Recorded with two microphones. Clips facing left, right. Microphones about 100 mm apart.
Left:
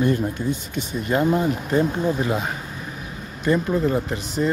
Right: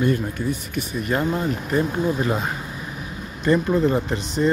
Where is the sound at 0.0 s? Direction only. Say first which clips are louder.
Left 1 dB; 20° left (ahead or behind).